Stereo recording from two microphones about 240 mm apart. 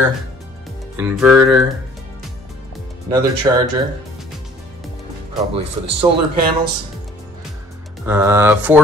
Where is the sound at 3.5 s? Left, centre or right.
Centre.